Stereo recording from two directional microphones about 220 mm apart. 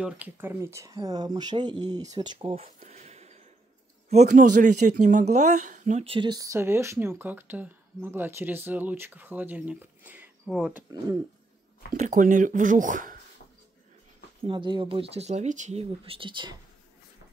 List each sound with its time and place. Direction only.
0.0 s speech: 10° right (ahead or behind)
11.9 s speech: 35° right (ahead or behind)
14.4 s speech: 20° right (ahead or behind)